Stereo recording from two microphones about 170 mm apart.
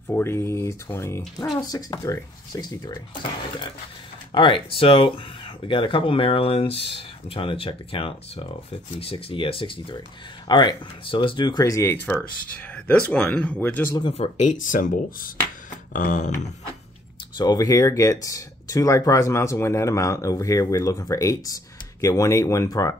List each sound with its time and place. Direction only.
0.1 s speech: 15° left (ahead or behind)
4.3 s speech: 30° left (ahead or behind); by 13.9 s 10° left (ahead or behind)
14.1 s speech: 45° left (ahead or behind)
17.4 s speech: 20° left (ahead or behind)